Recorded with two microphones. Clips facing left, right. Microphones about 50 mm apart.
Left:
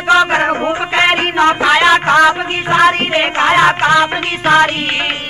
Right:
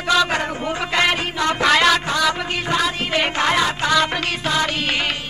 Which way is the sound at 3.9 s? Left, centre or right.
Left.